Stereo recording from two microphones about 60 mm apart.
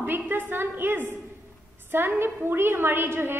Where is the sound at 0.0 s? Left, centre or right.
Right.